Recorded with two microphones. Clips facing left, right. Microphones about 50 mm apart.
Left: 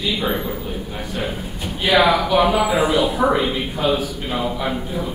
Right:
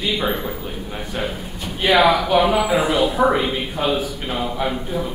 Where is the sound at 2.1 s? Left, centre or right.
Centre.